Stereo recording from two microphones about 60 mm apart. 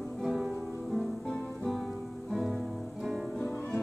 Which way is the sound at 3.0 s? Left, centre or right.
Centre.